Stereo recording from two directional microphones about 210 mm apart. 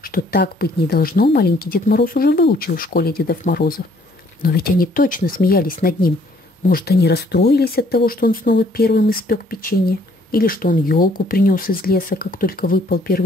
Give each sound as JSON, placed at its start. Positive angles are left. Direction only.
{"t": 0.0, "sound": "speech", "side_deg": 45}